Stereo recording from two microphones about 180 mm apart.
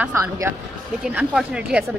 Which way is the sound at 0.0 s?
15° right (ahead or behind).